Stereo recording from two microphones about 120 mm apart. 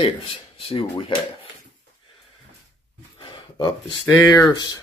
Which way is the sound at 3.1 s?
40° left (ahead or behind).